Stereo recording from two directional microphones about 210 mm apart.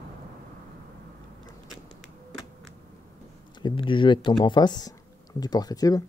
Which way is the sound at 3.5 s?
20° left (ahead or behind).